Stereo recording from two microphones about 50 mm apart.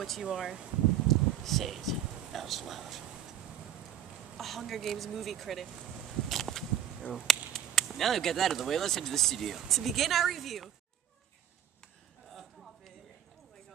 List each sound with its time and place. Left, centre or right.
0.2 s speech: centre
1.0 s speech: centre
4.4 s speech: centre
6.2 s a sound: centre
7.9 s speech: centre
12.3 s a sound: centre